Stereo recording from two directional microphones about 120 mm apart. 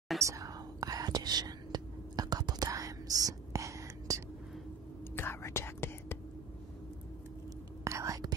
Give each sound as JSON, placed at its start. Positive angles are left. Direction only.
{"t": 0.2, "sound": "whispering", "side_deg": -30}
{"t": 5.1, "sound": "whispering", "side_deg": 20}
{"t": 7.8, "sound": "whispering", "side_deg": -25}